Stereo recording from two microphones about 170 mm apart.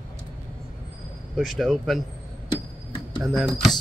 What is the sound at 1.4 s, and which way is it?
Speech, centre (ahead or behind).